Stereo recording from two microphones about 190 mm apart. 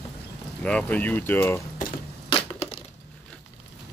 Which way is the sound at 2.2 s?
25° left (ahead or behind).